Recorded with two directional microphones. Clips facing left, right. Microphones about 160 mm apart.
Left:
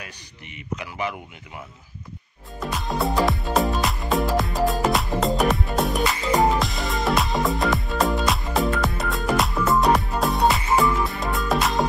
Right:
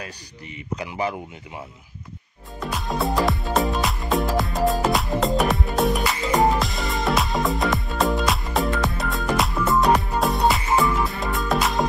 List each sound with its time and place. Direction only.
0.7 s speech: 35° right (ahead or behind)
2.6 s music: centre (ahead or behind)